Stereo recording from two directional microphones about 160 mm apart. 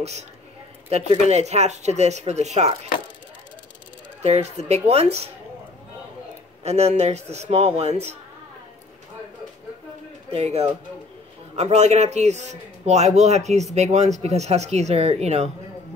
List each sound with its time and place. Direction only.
0.8 s a man's voice: 40° right (ahead or behind)
4.2 s speech: 40° right (ahead or behind)
6.6 s a man's voice: 40° right (ahead or behind)
10.3 s a man's voice: 40° right (ahead or behind)